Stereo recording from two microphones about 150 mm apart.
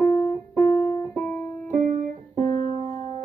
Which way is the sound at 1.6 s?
60° right (ahead or behind).